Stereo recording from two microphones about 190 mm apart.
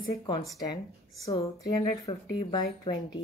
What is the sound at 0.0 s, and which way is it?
Speech, 20° left (ahead or behind).